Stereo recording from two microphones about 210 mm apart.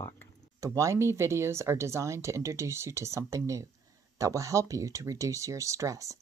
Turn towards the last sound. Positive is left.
turn(degrees=-15)  # may be behind; listen again after turning